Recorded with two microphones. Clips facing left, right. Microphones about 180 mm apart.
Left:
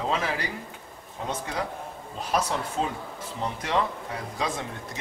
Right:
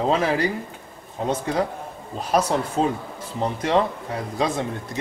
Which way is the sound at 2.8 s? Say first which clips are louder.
Right 7 dB; 40° right (ahead or behind).